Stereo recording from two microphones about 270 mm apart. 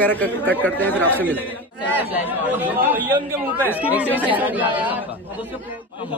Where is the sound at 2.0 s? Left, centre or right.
Centre.